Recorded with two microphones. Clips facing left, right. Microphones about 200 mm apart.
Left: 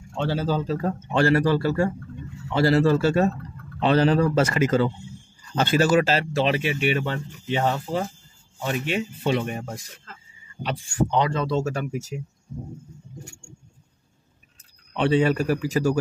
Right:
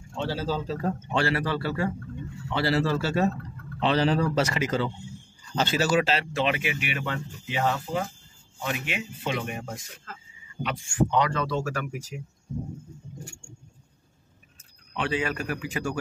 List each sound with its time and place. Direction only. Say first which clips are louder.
0.2 s speech: left 4 dB; 60° left (ahead or behind)
1.1 s speech: left 8 dB; 45° left (ahead or behind)
10.6 s speech: left 1 dB; 35° left (ahead or behind)
15.0 s speech: left 8 dB; 35° left (ahead or behind)